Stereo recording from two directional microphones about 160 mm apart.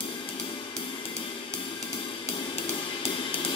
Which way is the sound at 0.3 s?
35° left (ahead or behind).